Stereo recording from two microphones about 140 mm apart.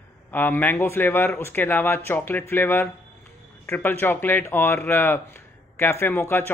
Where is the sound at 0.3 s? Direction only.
15° left (ahead or behind).